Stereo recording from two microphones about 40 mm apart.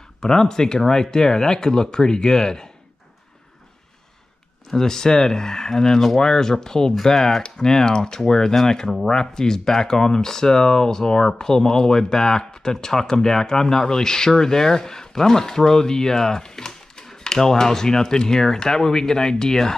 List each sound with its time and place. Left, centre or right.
0.2 s speech: centre
4.6 s speech: centre